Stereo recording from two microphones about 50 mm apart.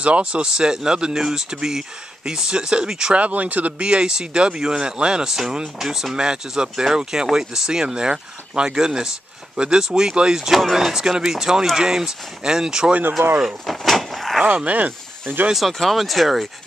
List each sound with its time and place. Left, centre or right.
0.0 s speech: right
3.2 s speech: right
3.8 s speech: centre
13.2 s speech: right
13.7 s vehicle: centre
14.6 s speech: right
15.5 s speech: centre